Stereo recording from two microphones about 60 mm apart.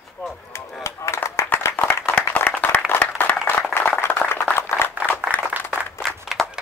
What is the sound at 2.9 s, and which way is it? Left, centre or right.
Applause, left.